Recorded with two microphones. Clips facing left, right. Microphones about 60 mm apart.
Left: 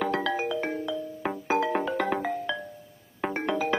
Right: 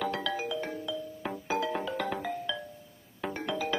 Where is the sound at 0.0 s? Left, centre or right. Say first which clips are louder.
Left 5 dB; left.